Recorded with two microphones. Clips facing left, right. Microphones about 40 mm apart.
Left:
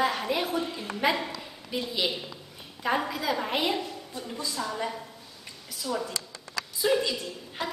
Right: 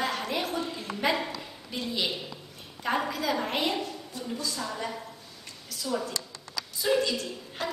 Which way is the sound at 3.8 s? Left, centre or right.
Left.